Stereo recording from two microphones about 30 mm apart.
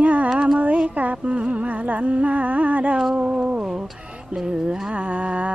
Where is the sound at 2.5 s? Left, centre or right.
Right.